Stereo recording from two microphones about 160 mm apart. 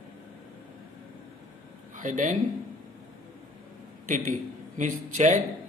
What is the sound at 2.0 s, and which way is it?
Speech, 50° right (ahead or behind).